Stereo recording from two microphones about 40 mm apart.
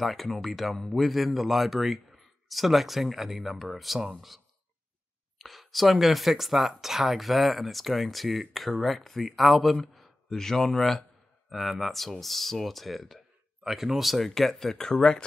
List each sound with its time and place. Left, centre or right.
0.0 s speech: centre
5.4 s speech: centre
10.3 s speech: centre
13.7 s speech: centre